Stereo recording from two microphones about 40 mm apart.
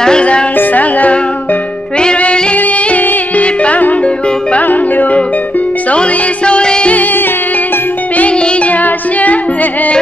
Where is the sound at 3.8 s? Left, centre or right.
Left.